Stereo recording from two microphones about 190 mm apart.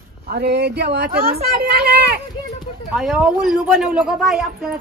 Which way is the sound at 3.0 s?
5° right (ahead or behind).